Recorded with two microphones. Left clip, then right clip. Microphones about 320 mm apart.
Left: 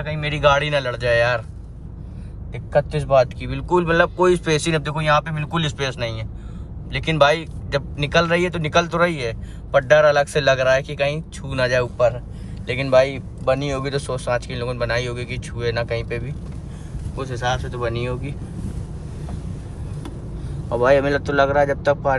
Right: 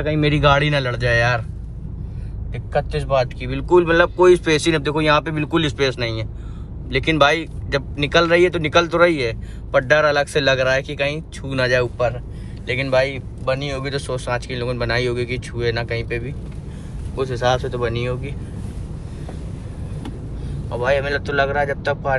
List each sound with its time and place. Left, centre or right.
0.0 s speech: centre
2.7 s speech: centre
20.7 s speech: left